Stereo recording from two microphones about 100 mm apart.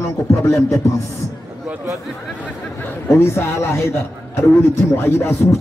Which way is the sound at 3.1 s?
25° left (ahead or behind).